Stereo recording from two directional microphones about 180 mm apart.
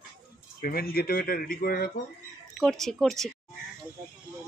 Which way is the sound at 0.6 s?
55° left (ahead or behind).